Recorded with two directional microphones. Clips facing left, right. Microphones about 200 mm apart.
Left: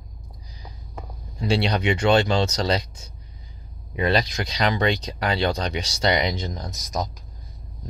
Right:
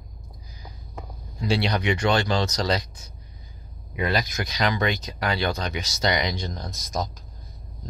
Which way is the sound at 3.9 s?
30° left (ahead or behind).